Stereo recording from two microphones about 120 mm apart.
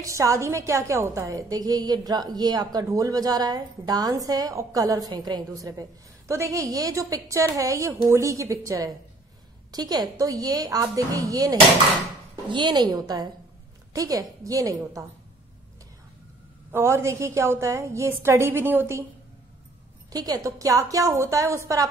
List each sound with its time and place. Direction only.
0.0 s a woman's voice: 25° right (ahead or behind)
12.4 s a woman's voice: 40° right (ahead or behind)
16.7 s a woman's voice: 20° right (ahead or behind)
20.1 s a woman's voice: 30° right (ahead or behind)